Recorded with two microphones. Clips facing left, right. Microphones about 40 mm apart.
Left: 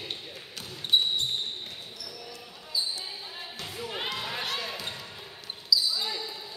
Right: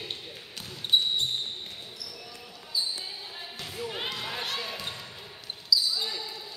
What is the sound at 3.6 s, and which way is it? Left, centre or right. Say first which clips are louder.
Basketball bounce: right 1 dB; centre.